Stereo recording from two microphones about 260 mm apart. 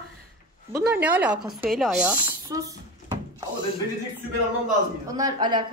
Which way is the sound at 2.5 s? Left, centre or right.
Centre.